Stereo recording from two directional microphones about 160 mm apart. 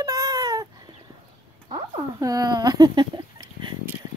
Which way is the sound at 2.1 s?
20° right (ahead or behind).